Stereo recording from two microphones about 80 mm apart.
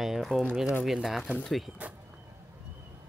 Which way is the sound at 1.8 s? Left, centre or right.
Centre.